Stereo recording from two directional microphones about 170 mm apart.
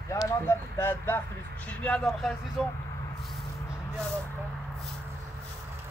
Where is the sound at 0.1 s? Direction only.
15° left (ahead or behind).